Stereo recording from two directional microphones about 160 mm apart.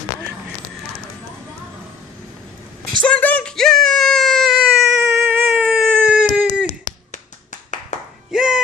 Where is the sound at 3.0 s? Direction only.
10° left (ahead or behind).